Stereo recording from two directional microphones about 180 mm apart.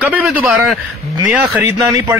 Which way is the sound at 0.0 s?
10° right (ahead or behind).